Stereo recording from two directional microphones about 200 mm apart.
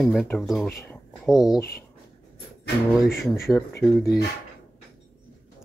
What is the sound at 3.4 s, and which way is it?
Speech, 15° left (ahead or behind).